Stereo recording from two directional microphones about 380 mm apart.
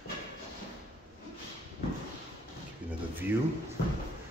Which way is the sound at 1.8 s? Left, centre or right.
Left.